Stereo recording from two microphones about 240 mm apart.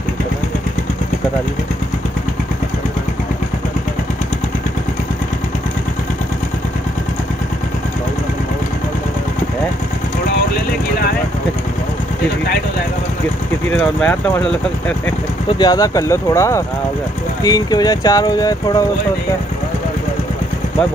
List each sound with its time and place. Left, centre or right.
14.0 s speech: centre
15.4 s speech: centre